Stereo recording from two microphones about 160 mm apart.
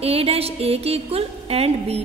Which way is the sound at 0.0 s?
40° right (ahead or behind).